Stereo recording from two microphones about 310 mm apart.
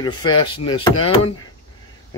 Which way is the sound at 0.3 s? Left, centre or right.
Left.